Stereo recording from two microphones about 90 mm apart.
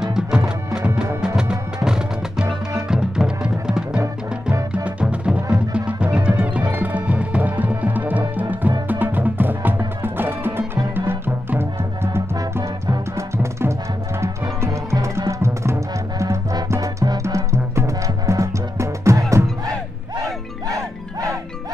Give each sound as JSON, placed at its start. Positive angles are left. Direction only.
{"t": 0.0, "sound": "music", "side_deg": -5}
{"t": 20.6, "sound": "music", "side_deg": -40}